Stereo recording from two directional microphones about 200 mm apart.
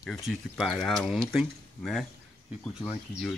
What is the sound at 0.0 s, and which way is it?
Speech, centre (ahead or behind).